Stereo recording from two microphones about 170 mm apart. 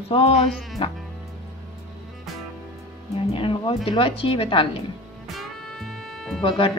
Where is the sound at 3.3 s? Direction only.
30° left (ahead or behind).